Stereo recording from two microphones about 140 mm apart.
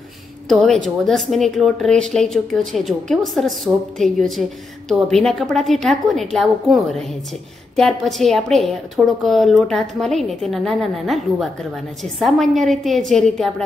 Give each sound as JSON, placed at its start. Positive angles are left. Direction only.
{"t": 0.5, "sound": "speech", "side_deg": 0}